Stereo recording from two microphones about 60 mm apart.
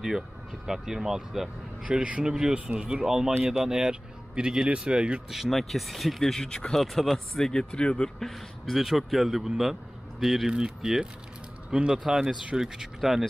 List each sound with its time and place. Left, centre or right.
0.7 s speech: centre
1.9 s speech: right
5.3 s a man's voice: centre
6.8 s speech: centre
8.2 s a man's voice: centre